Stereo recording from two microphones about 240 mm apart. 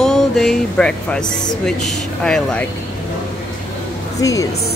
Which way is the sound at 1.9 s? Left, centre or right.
Centre.